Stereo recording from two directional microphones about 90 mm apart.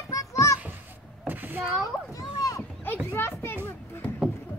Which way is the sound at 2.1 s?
40° left (ahead or behind).